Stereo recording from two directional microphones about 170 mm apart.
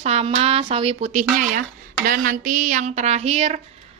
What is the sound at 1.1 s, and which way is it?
A woman's voice, 50° right (ahead or behind).